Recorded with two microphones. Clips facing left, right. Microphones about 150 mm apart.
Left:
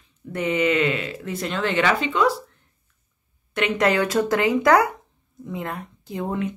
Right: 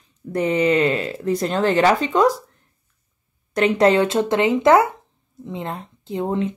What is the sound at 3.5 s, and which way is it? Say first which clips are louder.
Speech: right 5 dB; 35° right (ahead or behind).